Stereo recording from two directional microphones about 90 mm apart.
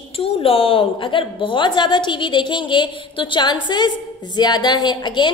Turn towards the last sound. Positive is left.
turn(degrees=55)  # may be behind; listen again after turning